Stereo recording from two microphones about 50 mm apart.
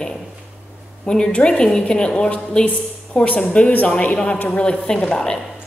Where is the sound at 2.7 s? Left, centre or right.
Left.